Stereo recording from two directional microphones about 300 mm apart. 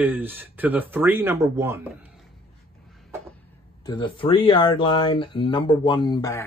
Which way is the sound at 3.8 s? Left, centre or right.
Centre.